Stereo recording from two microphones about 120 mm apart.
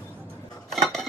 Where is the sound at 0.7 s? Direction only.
5° left (ahead or behind).